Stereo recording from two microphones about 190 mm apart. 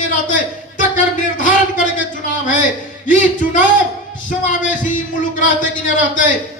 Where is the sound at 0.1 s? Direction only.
40° left (ahead or behind).